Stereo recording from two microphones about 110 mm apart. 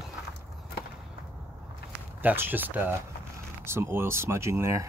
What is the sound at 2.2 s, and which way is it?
Speech, 15° right (ahead or behind).